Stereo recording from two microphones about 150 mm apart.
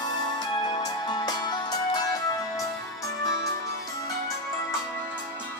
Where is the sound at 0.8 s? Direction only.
25° left (ahead or behind).